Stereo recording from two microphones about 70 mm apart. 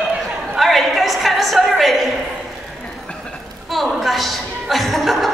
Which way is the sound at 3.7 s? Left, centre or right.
Centre.